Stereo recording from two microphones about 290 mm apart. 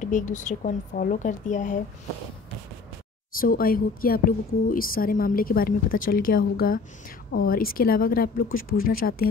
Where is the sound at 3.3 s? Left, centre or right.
Left.